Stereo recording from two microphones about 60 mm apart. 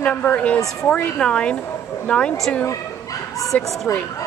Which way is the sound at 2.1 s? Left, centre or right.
Left.